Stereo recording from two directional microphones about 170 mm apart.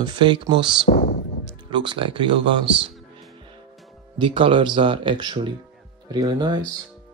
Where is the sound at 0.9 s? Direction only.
50° left (ahead or behind).